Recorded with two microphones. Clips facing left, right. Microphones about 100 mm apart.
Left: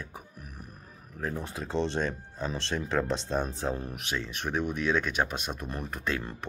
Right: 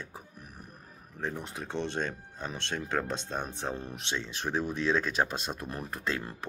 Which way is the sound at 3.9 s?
30° right (ahead or behind).